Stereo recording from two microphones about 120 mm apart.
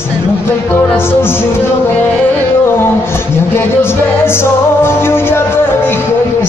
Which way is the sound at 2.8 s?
20° left (ahead or behind).